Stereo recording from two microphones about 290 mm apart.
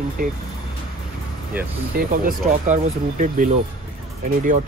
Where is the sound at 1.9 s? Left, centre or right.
Right.